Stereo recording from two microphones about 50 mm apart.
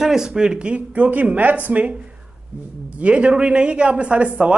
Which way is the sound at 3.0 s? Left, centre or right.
Right.